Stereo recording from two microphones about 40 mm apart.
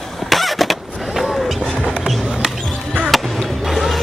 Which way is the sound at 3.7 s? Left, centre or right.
Centre.